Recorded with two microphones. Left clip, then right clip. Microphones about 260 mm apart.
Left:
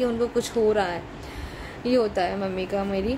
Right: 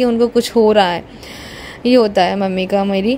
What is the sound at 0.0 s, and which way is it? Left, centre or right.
A woman's voice, right.